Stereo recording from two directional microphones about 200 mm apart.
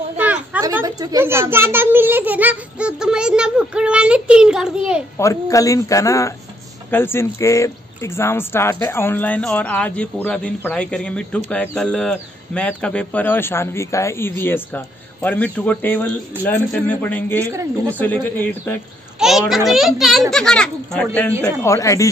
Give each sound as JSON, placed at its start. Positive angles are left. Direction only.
{"t": 0.2, "sound": "a sound", "side_deg": -10}
{"t": 0.7, "sound": "a child's voice", "side_deg": -15}
{"t": 5.2, "sound": "speech", "side_deg": 15}
{"t": 17.5, "sound": "speech", "side_deg": -15}
{"t": 17.9, "sound": "a child's voice", "side_deg": 10}
{"t": 21.7, "sound": "speech", "side_deg": 15}